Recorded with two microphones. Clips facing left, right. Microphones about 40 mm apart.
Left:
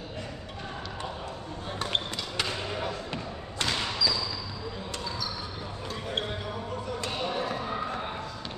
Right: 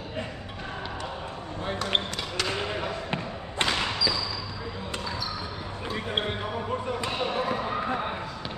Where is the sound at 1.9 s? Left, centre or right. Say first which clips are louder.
Right 2 dB; right.